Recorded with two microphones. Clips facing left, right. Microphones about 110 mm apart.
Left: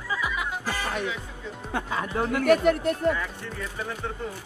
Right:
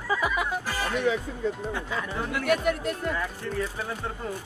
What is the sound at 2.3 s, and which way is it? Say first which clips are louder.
Speech: left 5 dB; 50° left (ahead or behind).